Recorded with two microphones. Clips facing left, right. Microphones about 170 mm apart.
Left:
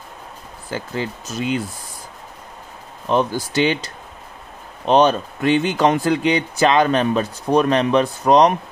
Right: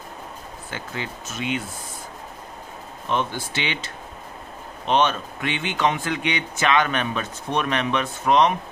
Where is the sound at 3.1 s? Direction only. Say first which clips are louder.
Left 7 dB; 40° left (ahead or behind).